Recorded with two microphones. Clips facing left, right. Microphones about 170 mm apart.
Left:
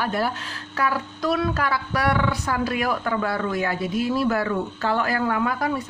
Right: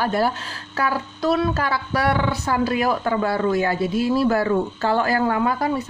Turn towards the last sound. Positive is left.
turn(degrees=-30)  # may be behind; listen again after turning